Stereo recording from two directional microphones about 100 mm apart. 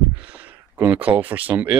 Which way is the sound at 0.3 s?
20° right (ahead or behind).